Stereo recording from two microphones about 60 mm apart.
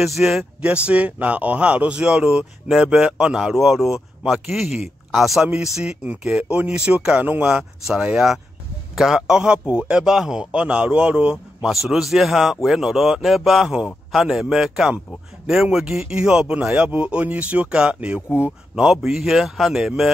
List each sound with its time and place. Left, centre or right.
0.0 s speech: centre
0.6 s speech: right
8.9 s a man's voice: centre
9.3 s speech: centre
11.7 s speech: centre; by 18.5 s right
18.8 s speech: centre